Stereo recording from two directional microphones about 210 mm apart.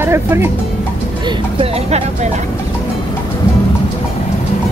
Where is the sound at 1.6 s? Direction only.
30° right (ahead or behind).